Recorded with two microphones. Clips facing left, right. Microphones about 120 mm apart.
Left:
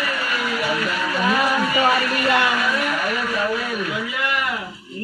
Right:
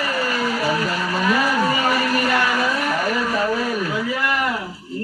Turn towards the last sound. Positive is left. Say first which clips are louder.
# right 3 dB
turn(degrees=-35)  # may be behind; listen again after turning